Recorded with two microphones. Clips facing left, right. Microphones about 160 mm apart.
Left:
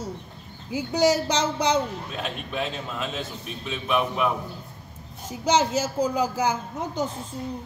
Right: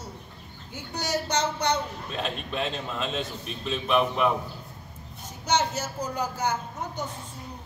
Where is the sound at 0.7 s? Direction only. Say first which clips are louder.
Left 9 dB; 90° left.